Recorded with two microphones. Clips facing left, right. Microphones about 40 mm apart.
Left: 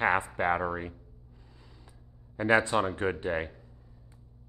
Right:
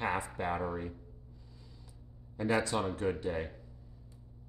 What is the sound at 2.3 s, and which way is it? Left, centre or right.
Speech, left.